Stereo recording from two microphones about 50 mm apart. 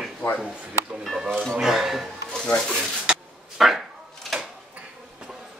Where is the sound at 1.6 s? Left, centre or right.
Centre.